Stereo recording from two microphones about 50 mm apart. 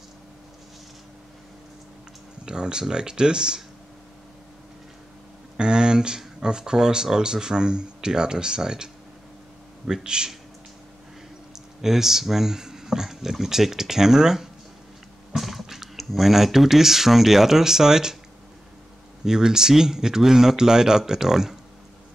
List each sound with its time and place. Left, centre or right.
2.4 s speech: centre
5.6 s speech: centre
11.5 s speech: centre
19.2 s speech: centre